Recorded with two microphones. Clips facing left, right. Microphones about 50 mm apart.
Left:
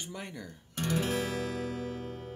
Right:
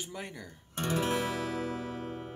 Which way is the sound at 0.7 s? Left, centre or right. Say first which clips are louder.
Even; right.